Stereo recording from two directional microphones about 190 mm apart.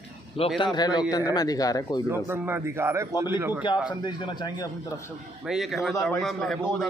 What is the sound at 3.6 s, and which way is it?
A man's voice, 25° left (ahead or behind).